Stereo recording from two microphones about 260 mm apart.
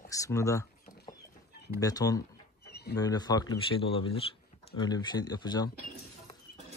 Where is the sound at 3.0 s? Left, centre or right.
Centre.